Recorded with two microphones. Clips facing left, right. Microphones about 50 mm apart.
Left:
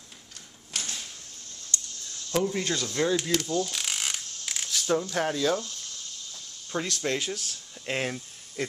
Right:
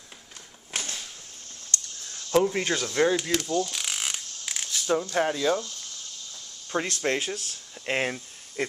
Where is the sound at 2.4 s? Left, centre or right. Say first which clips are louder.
Right 3 dB; right.